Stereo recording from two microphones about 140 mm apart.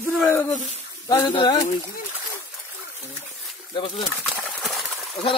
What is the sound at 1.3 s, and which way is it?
Speech, 35° left (ahead or behind).